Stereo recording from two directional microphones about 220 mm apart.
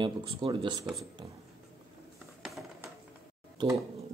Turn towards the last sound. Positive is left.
turn(degrees=-20)  # may be behind; listen again after turning